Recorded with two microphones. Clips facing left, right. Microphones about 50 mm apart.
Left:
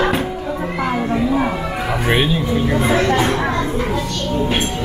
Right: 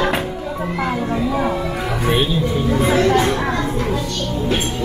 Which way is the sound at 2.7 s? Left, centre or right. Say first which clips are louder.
Right 2 dB; left.